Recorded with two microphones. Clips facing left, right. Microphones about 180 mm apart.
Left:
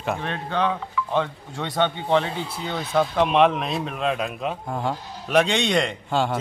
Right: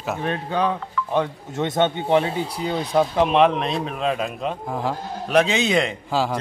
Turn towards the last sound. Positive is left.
turn(degrees=0)  # may be behind; listen again after turning